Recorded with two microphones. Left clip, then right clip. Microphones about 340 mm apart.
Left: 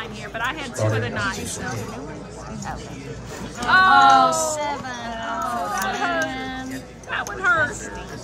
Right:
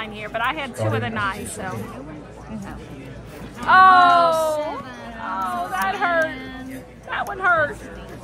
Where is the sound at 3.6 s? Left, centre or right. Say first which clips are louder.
Right 3 dB; centre.